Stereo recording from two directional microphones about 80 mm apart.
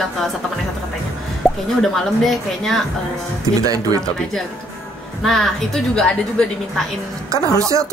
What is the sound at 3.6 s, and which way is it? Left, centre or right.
Speech, right.